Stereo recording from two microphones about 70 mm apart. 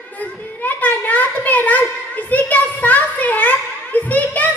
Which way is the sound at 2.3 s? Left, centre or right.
Left.